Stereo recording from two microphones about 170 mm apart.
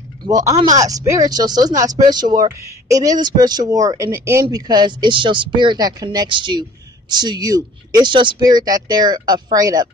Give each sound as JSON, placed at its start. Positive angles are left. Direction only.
{"t": 0.2, "sound": "speech", "side_deg": -20}